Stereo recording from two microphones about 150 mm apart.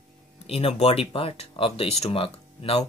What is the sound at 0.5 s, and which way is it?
Speech, 45° left (ahead or behind).